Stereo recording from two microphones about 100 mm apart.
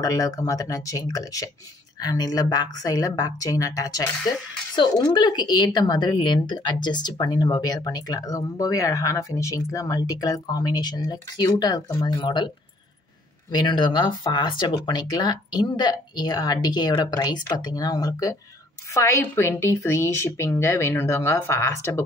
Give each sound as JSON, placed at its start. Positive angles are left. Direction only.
{"t": 0.0, "sound": "a woman's voice", "side_deg": 35}